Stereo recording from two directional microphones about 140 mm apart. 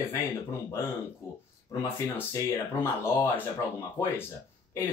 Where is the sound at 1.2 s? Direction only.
20° left (ahead or behind).